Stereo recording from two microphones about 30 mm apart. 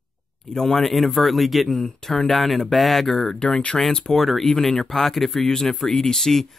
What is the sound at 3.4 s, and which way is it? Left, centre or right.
Speech, left.